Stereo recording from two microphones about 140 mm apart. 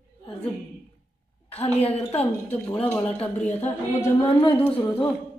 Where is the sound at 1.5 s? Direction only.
45° left (ahead or behind).